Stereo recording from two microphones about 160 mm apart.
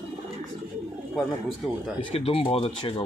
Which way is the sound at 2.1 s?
35° left (ahead or behind).